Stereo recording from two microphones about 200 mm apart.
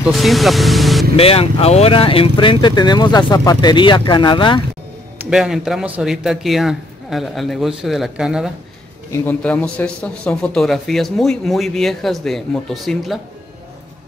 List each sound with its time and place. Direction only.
0.0 s a man's voice: centre (ahead or behind)
1.1 s speech: 30° left (ahead or behind)
5.2 s a man's voice: centre (ahead or behind)
9.1 s a man's voice: 10° left (ahead or behind)